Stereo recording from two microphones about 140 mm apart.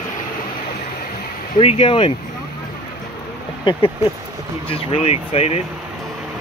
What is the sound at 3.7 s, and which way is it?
Speech, 35° left (ahead or behind).